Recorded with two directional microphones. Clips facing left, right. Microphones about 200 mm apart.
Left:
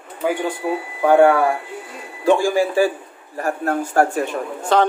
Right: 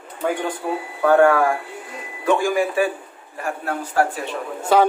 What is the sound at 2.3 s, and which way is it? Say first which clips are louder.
Speech: left 3 dB; 30° left (ahead or behind).